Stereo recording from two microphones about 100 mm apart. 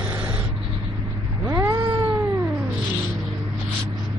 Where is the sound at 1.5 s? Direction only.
20° right (ahead or behind).